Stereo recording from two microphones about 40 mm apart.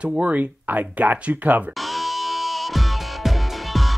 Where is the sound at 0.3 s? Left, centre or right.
Right.